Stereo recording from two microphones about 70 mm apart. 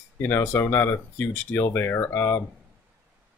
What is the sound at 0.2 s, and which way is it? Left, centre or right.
Speech, left.